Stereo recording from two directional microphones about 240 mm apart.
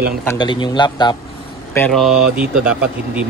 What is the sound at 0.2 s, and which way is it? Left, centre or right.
Speech, centre.